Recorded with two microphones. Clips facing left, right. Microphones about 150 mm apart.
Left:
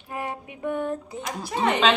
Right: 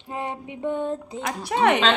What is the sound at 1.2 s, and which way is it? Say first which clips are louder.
Speech: right 7 dB; 70° right (ahead or behind).